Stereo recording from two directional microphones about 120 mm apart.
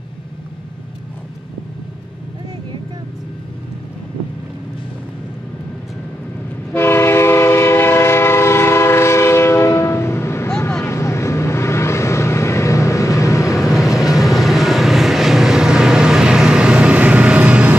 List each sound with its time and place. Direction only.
6.7 s train: 20° left (ahead or behind)
10.9 s vehicle: 25° left (ahead or behind)
13.7 s vehicle: centre (ahead or behind)